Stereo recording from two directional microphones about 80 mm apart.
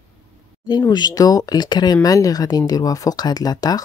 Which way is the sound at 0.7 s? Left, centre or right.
Left.